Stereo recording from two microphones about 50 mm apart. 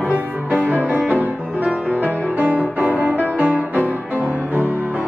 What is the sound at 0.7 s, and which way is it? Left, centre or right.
Music, right.